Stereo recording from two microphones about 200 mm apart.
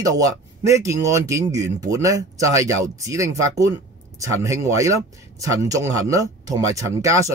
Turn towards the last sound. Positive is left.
turn(degrees=-15)  # may be behind; listen again after turning